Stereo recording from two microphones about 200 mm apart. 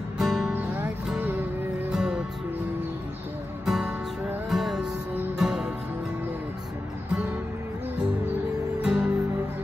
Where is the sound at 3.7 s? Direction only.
5° right (ahead or behind).